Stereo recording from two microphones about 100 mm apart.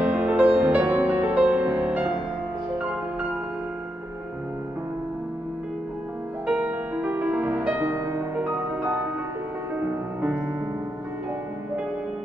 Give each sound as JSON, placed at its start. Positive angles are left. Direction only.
{"t": 0.0, "sound": "music", "side_deg": -15}
{"t": 6.4, "sound": "music", "side_deg": -15}